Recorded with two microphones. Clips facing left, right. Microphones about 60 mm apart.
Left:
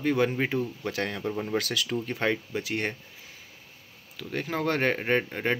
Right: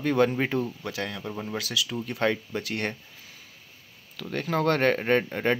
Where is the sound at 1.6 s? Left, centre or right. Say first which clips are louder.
Left 1 dB; left.